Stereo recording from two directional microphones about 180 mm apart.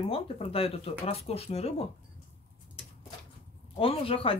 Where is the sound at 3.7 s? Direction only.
30° left (ahead or behind).